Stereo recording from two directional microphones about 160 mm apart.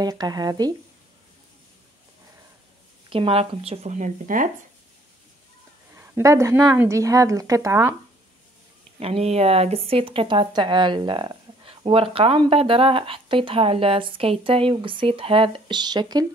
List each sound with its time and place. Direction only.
0.0 s speech: 25° right (ahead or behind)
3.1 s speech: 35° right (ahead or behind); by 4.5 s 55° right (ahead or behind)
5.9 s a woman's voice: 15° right (ahead or behind)
9.0 s speech: 40° right (ahead or behind)